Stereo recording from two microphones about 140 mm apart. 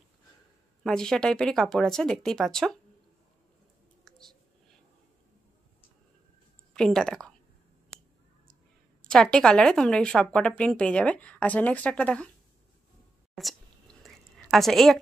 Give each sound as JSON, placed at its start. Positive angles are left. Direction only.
{"t": 0.8, "sound": "speech", "side_deg": 5}
{"t": 4.0, "sound": "a sound", "side_deg": 5}
{"t": 6.7, "sound": "a woman's voice", "side_deg": 5}
{"t": 9.0, "sound": "speech", "side_deg": 5}
{"t": 13.3, "sound": "speech", "side_deg": 0}
{"t": 14.0, "sound": "a sound", "side_deg": 0}